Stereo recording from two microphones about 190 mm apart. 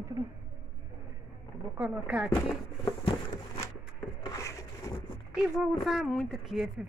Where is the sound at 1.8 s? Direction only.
5° right (ahead or behind).